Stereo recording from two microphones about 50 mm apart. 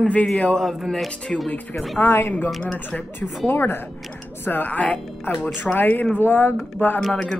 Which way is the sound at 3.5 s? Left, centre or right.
Left.